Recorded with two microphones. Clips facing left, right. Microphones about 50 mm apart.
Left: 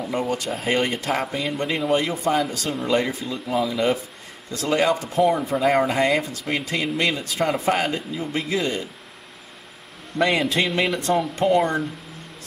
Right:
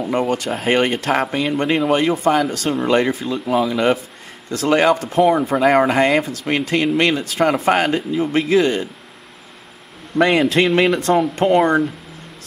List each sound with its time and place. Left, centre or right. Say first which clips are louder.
0.0 s speech: right 6 dB; right
0.4 s speech: right 5 dB; right
3.4 s speech: right 5 dB; right
10.1 s speech: right 6 dB; right
10.9 s speech: right 6 dB; right
11.1 s speech: right 2 dB; right